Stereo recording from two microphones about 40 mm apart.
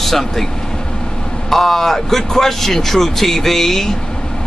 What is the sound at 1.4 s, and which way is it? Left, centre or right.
Speech, centre.